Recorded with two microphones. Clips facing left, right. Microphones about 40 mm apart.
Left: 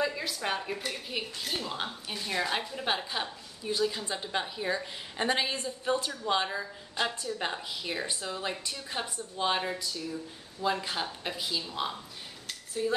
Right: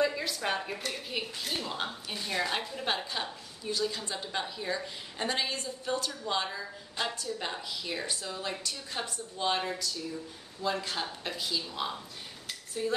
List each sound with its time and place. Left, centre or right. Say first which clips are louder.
0.0 s a woman's voice: right 2 dB; centre
6.6 s a woman's voice: left 2 dB; centre
7.2 s a woman's voice: left 2 dB; left; by 12.0 s centre
12.4 s a sound: left 2 dB; centre